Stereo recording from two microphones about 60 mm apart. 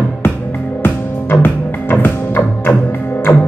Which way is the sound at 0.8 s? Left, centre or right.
Left.